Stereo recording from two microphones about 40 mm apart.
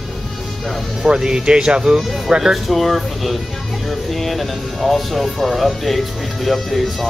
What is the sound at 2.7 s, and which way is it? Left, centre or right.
Speech, centre.